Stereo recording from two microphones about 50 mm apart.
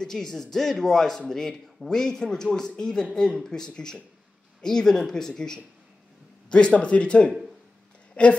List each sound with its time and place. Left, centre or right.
0.0 s speech: centre
6.5 s speech: left